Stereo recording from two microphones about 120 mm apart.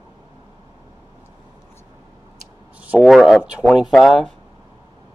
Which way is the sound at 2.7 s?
10° right (ahead or behind).